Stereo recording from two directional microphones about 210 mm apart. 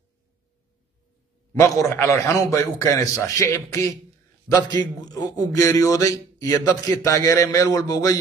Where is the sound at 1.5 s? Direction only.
15° left (ahead or behind).